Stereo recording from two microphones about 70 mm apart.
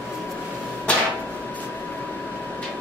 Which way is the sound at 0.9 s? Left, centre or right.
Centre.